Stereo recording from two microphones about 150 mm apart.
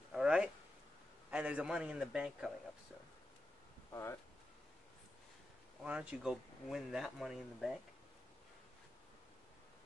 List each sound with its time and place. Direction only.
0.1 s a sound: 5° right (ahead or behind)
1.3 s speech: 10° right (ahead or behind)
3.9 s speech: 20° left (ahead or behind)
5.9 s speech: 5° right (ahead or behind)